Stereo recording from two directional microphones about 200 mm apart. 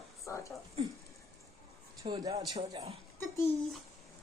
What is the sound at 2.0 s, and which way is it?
Speech, 20° right (ahead or behind).